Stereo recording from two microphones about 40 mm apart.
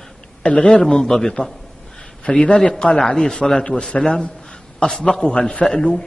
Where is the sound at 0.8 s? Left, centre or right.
Centre.